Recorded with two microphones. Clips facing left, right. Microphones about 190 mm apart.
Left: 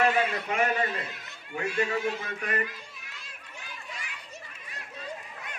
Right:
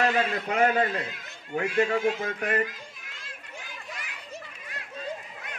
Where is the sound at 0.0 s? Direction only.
40° right (ahead or behind).